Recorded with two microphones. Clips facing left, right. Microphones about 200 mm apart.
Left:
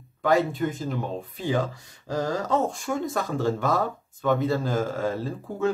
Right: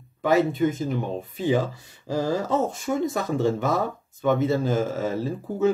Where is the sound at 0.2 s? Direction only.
5° right (ahead or behind).